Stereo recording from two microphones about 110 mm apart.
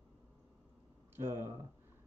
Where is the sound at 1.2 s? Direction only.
20° right (ahead or behind).